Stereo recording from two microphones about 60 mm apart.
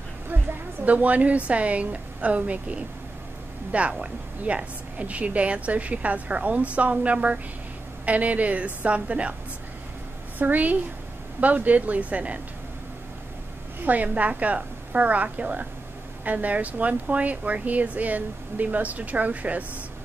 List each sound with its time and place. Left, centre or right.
0.8 s speech: right
4.0 s speech: centre
10.4 s speech: right
13.7 s speech: right